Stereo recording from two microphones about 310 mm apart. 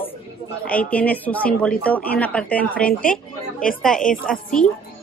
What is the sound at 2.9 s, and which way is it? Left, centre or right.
Speech, left.